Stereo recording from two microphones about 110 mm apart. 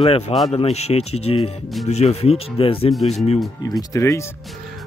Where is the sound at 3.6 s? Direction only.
35° left (ahead or behind).